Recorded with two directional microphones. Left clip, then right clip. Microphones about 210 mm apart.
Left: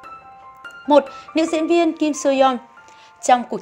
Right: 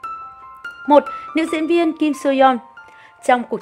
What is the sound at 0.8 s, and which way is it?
Speech, 30° right (ahead or behind).